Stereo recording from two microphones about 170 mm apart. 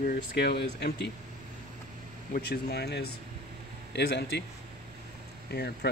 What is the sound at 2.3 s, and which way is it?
Speech, 70° left (ahead or behind).